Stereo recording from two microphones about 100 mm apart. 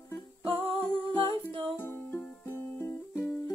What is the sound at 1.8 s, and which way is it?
Music, 20° left (ahead or behind).